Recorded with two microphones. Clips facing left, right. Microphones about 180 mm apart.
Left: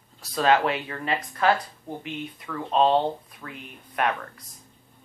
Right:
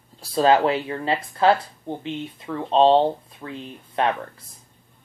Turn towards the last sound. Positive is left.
turn(degrees=-25)  # may be behind; listen again after turning